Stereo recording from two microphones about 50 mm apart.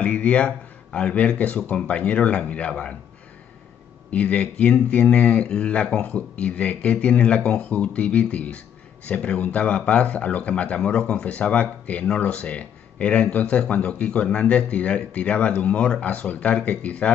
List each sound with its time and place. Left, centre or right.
0.0 s speech: left
4.1 s speech: left